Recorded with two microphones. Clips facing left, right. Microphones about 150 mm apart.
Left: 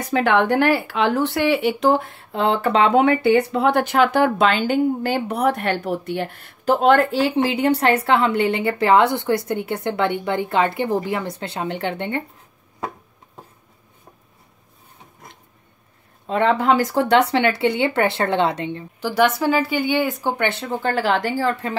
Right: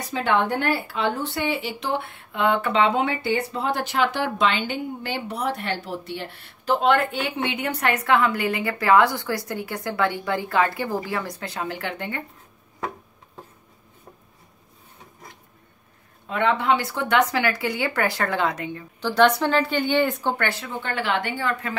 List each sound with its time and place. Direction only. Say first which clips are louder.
0.0 s speech: left 5 dB; 65° left (ahead or behind)
1.9 s speech: left 8 dB; 40° left (ahead or behind)
16.3 s speech: left 4 dB; 35° left (ahead or behind)
18.9 s a woman's voice: even; 10° left (ahead or behind)
20.3 s speech: left 5 dB; 25° left (ahead or behind)